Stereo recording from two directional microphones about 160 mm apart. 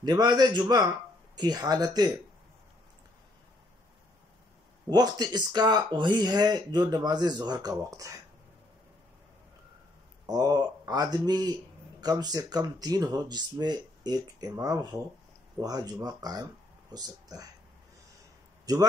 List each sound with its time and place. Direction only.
0.0 s speech: 25° right (ahead or behind)
4.8 s speech: 25° right (ahead or behind)
10.2 s speech: 25° right (ahead or behind)
18.7 s speech: 20° right (ahead or behind)